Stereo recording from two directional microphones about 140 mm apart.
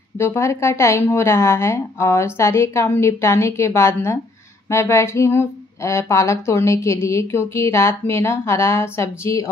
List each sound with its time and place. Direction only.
0.2 s speech: 20° left (ahead or behind)